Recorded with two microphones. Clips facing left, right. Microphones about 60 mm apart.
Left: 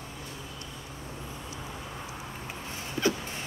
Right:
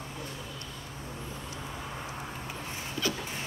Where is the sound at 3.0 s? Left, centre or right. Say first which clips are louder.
Left 5 dB; left.